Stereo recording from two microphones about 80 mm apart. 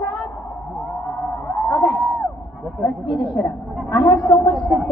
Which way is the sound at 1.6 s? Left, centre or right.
Left.